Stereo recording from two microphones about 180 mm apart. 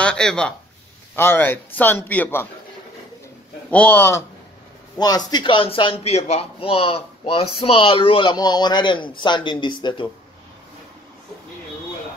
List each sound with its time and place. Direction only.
0.0 s a man's voice: 5° left (ahead or behind)
3.7 s a man's voice: 10° left (ahead or behind)
4.9 s speech: 20° left (ahead or behind)